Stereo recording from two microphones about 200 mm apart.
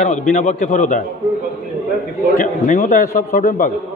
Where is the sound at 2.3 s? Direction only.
40° left (ahead or behind).